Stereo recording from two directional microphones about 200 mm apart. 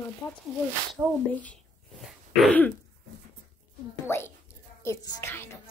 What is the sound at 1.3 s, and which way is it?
A woman's voice, 5° left (ahead or behind).